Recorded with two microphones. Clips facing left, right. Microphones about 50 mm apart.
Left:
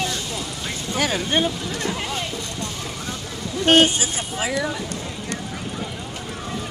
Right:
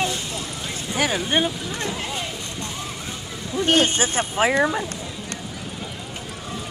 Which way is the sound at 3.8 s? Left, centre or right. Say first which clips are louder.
Left 1 dB; right.